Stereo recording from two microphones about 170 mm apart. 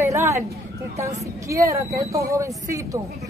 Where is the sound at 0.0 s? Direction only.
15° right (ahead or behind).